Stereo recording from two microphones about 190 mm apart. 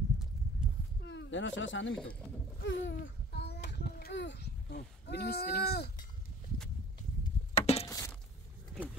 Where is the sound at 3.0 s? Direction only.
55° left (ahead or behind).